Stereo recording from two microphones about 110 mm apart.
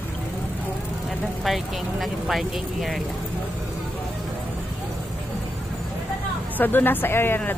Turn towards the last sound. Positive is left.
turn(degrees=20)  # may be behind; listen again after turning